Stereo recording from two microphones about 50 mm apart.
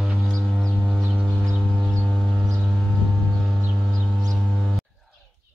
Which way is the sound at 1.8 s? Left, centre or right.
Right.